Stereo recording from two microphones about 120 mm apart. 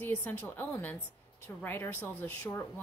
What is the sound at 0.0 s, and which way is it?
A woman's voice, 15° left (ahead or behind).